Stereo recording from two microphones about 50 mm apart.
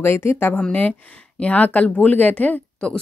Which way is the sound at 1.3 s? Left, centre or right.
Left.